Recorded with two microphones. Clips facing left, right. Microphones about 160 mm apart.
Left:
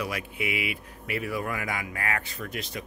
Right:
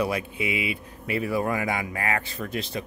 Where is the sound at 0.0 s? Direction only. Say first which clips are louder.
Right 5 dB; 25° right (ahead or behind).